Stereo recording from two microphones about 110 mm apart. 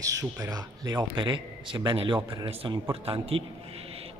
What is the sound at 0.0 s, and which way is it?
A man's voice, 30° right (ahead or behind).